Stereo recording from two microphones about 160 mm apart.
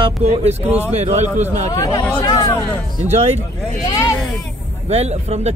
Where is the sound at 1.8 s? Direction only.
20° left (ahead or behind).